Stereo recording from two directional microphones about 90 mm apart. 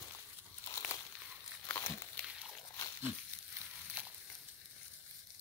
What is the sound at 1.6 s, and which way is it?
Crumpling, 25° left (ahead or behind).